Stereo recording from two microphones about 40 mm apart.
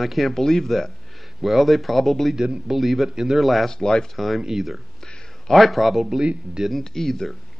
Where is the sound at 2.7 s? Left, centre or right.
Centre.